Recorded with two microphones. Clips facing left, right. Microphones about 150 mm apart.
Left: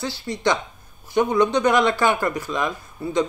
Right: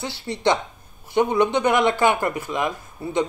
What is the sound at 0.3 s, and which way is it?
Speech, 30° right (ahead or behind).